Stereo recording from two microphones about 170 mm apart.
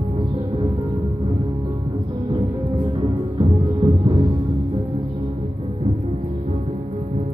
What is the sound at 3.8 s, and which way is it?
Music, 35° right (ahead or behind).